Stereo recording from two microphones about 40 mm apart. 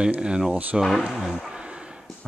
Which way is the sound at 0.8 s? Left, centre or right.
Centre.